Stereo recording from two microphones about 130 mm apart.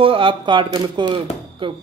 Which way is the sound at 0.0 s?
40° right (ahead or behind).